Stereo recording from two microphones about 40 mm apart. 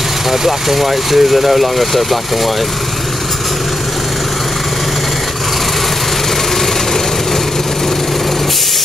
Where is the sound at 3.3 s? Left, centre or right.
Centre.